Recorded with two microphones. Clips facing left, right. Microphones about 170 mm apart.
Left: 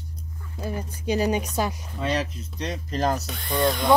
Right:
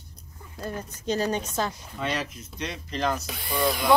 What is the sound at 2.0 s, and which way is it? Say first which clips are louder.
Speech: left 4 dB; 35° left (ahead or behind).